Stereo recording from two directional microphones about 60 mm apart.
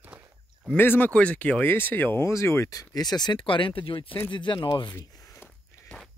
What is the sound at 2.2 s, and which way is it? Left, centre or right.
Speech, left.